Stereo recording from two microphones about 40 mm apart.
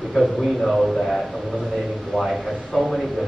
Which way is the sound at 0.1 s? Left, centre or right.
Centre.